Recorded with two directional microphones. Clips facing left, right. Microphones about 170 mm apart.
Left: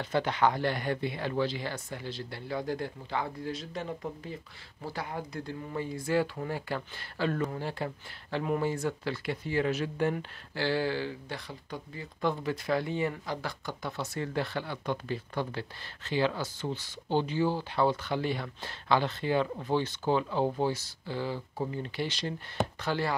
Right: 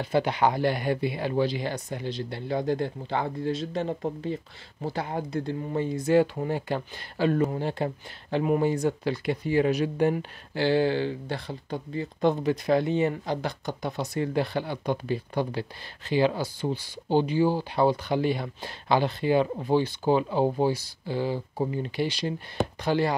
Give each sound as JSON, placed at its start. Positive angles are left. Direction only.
{"t": 0.0, "sound": "speech", "side_deg": -10}